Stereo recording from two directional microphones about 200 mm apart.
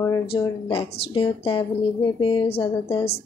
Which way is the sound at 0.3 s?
30° left (ahead or behind).